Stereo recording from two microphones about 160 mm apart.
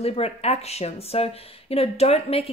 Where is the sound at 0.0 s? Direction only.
40° left (ahead or behind).